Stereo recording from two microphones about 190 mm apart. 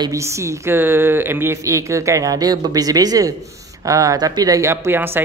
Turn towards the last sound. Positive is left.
turn(degrees=-10)  # may be behind; listen again after turning